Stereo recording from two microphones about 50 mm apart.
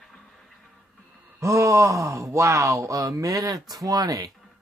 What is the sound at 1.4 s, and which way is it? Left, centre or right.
Speech, right.